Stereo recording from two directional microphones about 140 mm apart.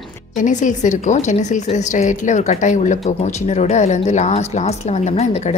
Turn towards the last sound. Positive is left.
turn(degrees=50)  # may be behind; listen again after turning